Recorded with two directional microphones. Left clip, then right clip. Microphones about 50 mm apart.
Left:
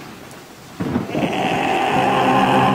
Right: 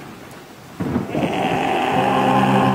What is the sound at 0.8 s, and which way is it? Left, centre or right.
Thunder, left.